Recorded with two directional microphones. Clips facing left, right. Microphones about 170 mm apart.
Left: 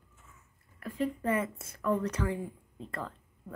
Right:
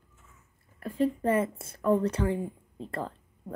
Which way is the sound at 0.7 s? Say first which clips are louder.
Right 5 dB; 30° right (ahead or behind).